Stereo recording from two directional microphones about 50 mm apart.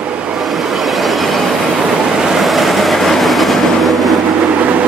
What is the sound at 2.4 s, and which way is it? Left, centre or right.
Train, centre.